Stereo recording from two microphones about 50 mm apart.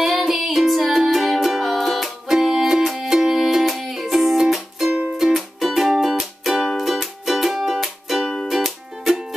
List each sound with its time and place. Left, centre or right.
0.0 s music: centre